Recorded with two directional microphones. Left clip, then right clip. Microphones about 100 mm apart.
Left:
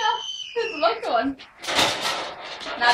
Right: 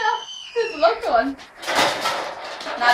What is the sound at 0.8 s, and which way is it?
Speech, 45° right (ahead or behind).